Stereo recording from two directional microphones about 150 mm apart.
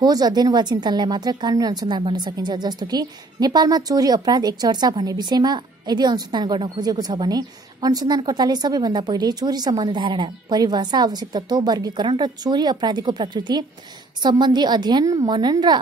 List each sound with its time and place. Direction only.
0.0 s a woman's voice: 25° right (ahead or behind)